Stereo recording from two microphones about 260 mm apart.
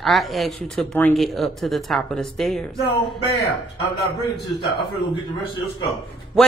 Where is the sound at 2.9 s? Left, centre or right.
Left.